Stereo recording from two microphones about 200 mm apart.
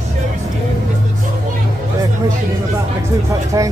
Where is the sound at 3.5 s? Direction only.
15° right (ahead or behind).